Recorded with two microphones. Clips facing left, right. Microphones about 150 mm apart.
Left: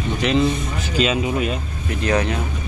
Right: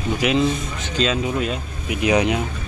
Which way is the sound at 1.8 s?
15° right (ahead or behind).